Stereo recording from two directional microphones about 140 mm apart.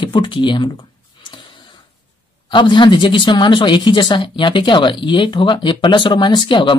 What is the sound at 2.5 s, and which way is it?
A woman's voice, 35° left (ahead or behind).